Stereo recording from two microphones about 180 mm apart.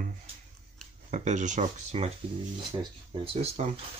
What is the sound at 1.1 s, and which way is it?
Speech, 40° right (ahead or behind).